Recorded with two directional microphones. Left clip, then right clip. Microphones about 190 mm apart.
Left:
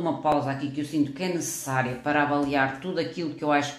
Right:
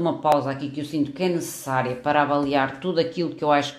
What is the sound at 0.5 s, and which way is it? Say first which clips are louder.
Speech: right 1 dB; 40° right (ahead or behind).